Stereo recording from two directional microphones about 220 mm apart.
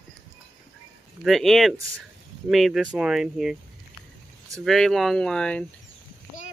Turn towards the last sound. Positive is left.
turn(degrees=5)  # may be behind; listen again after turning